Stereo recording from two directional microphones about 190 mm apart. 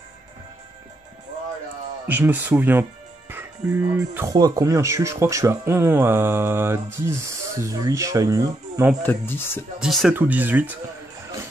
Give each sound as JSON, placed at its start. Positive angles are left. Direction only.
{"t": 2.0, "sound": "speech", "side_deg": -10}
{"t": 9.0, "sound": "speech", "side_deg": 10}
{"t": 9.8, "sound": "speech", "side_deg": 0}